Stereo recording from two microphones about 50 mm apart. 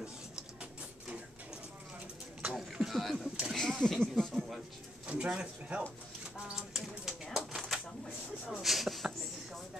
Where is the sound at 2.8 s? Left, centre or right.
Centre.